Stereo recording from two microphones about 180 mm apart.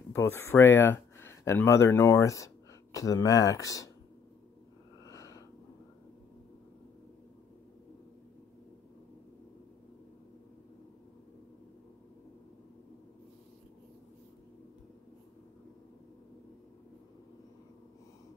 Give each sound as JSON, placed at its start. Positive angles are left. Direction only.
{"t": 0.1, "sound": "speech", "side_deg": 15}
{"t": 5.0, "sound": "snort", "side_deg": 20}